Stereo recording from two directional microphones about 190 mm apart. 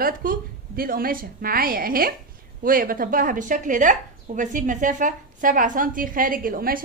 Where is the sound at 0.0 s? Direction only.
50° right (ahead or behind).